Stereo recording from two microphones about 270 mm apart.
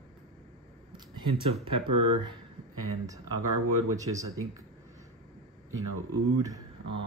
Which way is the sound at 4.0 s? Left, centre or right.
Centre.